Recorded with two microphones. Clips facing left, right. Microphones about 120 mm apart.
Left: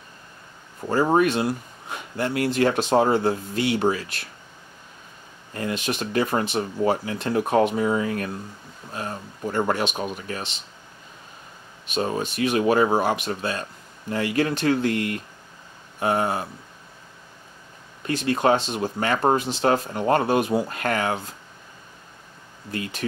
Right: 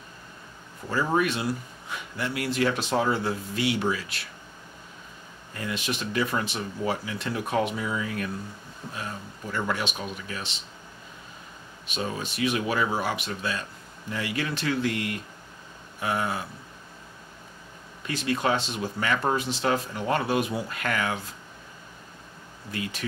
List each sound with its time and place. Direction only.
0.8 s speech: 40° left (ahead or behind)
5.5 s speech: 40° left (ahead or behind)
11.9 s speech: 45° left (ahead or behind)
18.0 s speech: 45° left (ahead or behind)
22.7 s speech: 45° left (ahead or behind)